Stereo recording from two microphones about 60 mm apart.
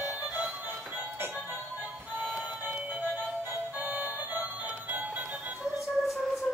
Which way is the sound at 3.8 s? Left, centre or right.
Right.